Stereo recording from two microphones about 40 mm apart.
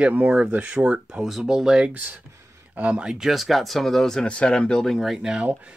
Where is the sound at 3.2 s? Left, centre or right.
Centre.